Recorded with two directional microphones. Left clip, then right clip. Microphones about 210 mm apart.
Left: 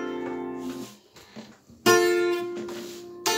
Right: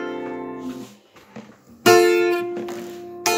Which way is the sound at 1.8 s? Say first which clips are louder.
Right 6 dB; 40° right (ahead or behind).